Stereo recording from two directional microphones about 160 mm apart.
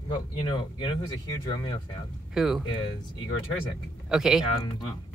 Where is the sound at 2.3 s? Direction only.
Centre (ahead or behind).